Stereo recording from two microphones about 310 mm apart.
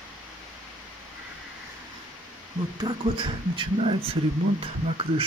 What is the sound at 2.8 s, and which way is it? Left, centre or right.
Speech, centre.